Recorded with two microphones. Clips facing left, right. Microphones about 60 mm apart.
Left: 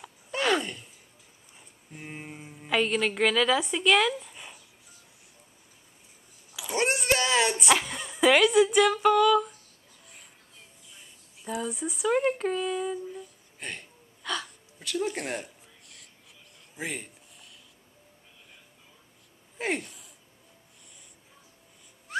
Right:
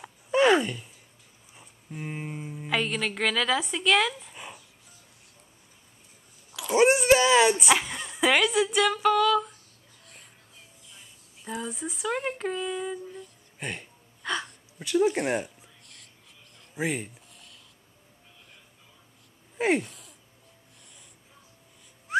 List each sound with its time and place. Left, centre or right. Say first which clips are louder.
0.0 s a sound: right 7 dB; centre
1.6 s a woman's voice: right 6 dB; centre
6.7 s speech: right 7 dB; centre
10.9 s speech: even; centre
13.6 s music: right 3 dB; centre
14.3 s speech: right 2 dB; centre
16.7 s speech: right 6 dB; centre
19.6 s speech: right 6 dB; centre
19.9 s a sound: right 2 dB; centre
22.1 s a sound: right 7 dB; centre